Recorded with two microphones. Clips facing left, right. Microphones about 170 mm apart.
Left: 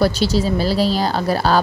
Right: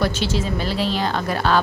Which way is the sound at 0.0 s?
35° left (ahead or behind).